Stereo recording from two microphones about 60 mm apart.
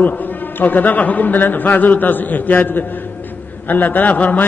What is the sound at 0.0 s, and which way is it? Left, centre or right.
A man's voice, left.